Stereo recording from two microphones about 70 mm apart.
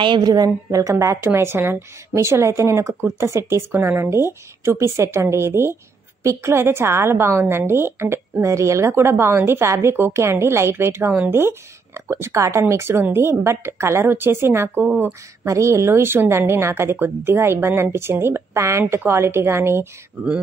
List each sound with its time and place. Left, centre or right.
0.2 s a woman's voice: right
14.8 s speech: right
15.4 s a woman's voice: right